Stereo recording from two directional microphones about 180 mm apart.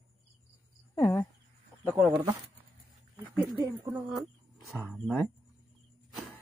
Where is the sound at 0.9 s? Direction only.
15° left (ahead or behind).